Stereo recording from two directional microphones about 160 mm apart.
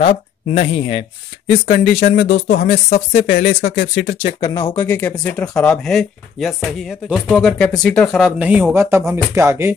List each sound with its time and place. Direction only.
0.5 s speech: 40° left (ahead or behind)
1.7 s speech: 85° left
4.4 s speech: 25° left (ahead or behind)
4.7 s speech: 10° left (ahead or behind)
8.3 s speech: 10° right (ahead or behind)